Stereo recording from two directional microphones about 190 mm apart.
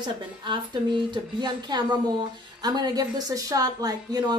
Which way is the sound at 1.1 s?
20° right (ahead or behind).